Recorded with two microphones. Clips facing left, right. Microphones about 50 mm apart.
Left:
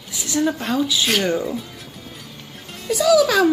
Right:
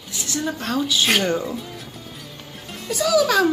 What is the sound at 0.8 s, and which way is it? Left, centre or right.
Speech, centre.